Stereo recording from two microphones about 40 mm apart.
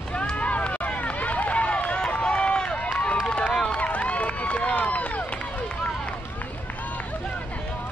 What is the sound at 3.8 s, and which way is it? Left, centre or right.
Run, left.